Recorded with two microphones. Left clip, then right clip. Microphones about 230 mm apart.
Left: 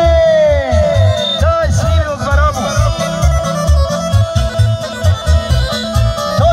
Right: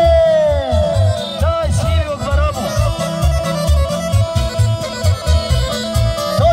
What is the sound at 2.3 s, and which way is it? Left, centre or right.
Music, centre.